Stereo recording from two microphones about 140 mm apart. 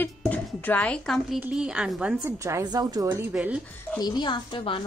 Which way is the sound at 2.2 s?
20° right (ahead or behind).